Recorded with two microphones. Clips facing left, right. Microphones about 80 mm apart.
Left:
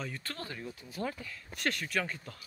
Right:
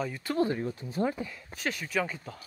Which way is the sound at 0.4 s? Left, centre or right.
Right.